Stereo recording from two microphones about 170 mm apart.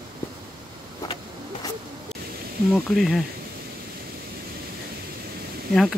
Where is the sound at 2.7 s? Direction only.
Centre (ahead or behind).